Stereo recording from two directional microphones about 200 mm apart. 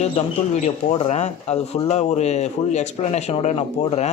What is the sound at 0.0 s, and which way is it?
Speech, 30° left (ahead or behind).